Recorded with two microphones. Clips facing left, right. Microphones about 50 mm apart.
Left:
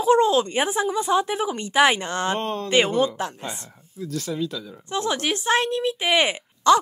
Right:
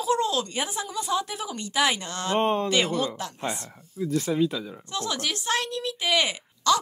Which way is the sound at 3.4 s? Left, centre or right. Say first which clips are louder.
Right 3 dB; right.